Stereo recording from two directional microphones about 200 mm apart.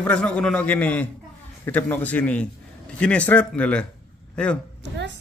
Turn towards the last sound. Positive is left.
turn(degrees=-60)  # may be behind; listen again after turning